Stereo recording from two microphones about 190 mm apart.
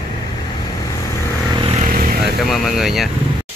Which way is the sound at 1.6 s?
30° right (ahead or behind).